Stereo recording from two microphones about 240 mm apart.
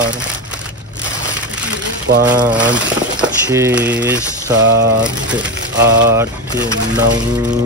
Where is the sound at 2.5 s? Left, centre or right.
Centre.